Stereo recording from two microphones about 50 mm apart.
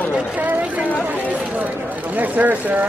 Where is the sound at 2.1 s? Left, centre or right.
Right.